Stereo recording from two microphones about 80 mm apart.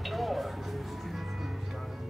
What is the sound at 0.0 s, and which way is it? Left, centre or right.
Music, centre.